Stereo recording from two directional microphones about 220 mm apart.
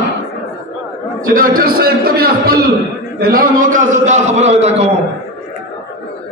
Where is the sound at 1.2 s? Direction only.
40° right (ahead or behind).